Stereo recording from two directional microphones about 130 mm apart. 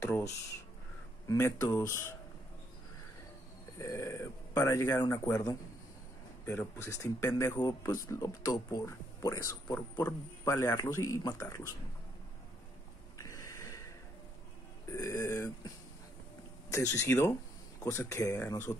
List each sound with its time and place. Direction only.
0.0 s a sound: 20° left (ahead or behind)
1.2 s speech: 25° left (ahead or behind)
3.7 s speech: 25° left (ahead or behind)
9.8 s speech: 20° left (ahead or behind)
13.2 s a sound: 25° left (ahead or behind)
14.9 s speech: 25° left (ahead or behind)
16.7 s speech: 25° left (ahead or behind)